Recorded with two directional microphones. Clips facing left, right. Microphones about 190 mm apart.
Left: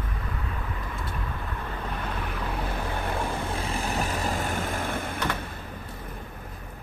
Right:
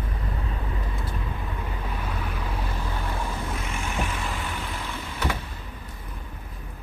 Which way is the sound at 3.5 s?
35° left (ahead or behind).